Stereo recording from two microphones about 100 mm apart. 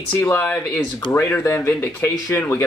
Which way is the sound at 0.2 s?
25° left (ahead or behind).